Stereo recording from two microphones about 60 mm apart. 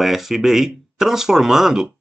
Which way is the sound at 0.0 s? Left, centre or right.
Centre.